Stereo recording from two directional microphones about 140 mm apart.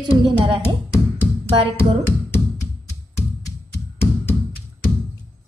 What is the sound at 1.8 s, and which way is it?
Music, 20° left (ahead or behind).